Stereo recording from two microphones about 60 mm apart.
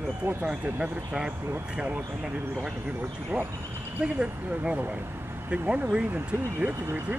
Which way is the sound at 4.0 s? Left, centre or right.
Centre.